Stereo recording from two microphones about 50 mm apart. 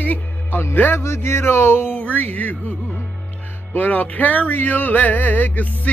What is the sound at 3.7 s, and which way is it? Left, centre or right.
Music, left.